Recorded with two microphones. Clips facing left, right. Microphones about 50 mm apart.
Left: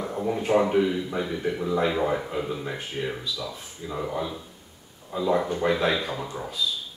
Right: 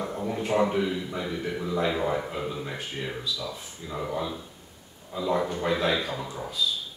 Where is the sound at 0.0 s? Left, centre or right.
Centre.